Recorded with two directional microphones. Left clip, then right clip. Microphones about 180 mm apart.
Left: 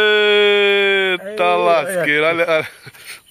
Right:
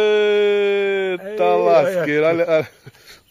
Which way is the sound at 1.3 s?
10° right (ahead or behind).